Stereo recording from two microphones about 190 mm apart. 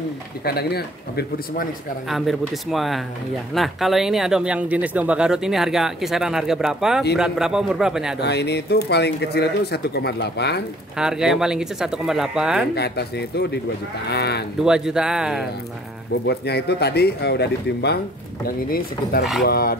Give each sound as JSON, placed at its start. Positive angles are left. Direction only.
{"t": 0.5, "sound": "speech", "side_deg": 55}
{"t": 2.0, "sound": "speech", "side_deg": 0}
{"t": 8.2, "sound": "speech", "side_deg": 60}
{"t": 11.0, "sound": "speech", "side_deg": -5}
{"t": 12.7, "sound": "speech", "side_deg": 60}
{"t": 14.6, "sound": "speech", "side_deg": -5}
{"t": 16.3, "sound": "speech", "side_deg": 60}
{"t": 19.4, "sound": "speech", "side_deg": 55}